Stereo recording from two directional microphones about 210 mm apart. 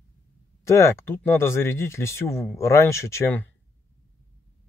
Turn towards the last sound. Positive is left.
turn(degrees=10)  # may be behind; listen again after turning